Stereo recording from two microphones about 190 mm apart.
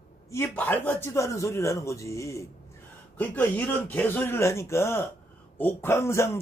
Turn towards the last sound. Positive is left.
turn(degrees=15)  # may be behind; listen again after turning